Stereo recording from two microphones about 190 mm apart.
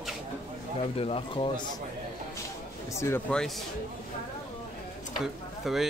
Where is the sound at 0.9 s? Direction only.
30° left (ahead or behind).